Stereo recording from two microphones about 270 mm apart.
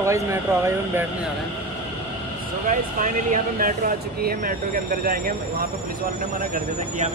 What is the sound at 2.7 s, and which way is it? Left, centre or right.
Speech, right.